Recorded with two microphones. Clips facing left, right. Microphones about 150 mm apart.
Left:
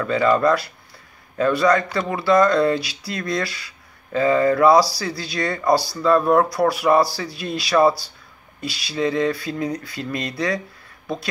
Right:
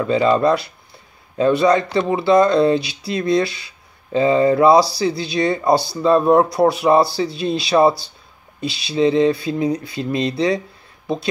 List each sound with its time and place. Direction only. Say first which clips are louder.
0.0 s speech: right 2 dB; 20° right (ahead or behind)